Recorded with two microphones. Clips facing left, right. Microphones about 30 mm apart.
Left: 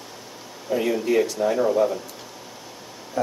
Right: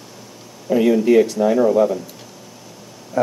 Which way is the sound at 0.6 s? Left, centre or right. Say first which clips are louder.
Right 8 dB; centre.